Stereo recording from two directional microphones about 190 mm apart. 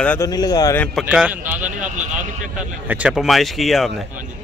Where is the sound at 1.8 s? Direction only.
40° right (ahead or behind).